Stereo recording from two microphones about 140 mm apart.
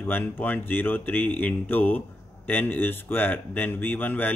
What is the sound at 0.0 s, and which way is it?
Speech, 15° left (ahead or behind).